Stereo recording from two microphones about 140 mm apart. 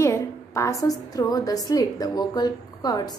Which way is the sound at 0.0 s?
20° left (ahead or behind).